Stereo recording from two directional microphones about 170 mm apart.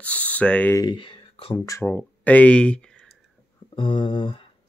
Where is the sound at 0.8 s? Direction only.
25° left (ahead or behind).